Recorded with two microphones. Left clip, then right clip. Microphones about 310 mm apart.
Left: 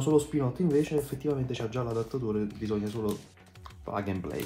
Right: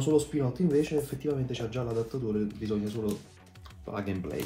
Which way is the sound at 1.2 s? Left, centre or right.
Centre.